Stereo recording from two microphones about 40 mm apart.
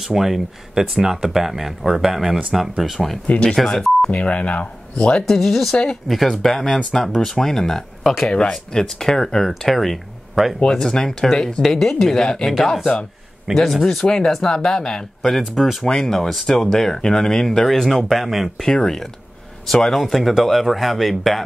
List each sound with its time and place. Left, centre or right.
0.0 s speech: centre
4.1 s speech: left
5.3 s speech: centre
10.4 s speech: centre
10.7 s speech: centre
14.0 s speech: centre
15.3 s speech: centre
15.8 s speech: centre
18.7 s speech: centre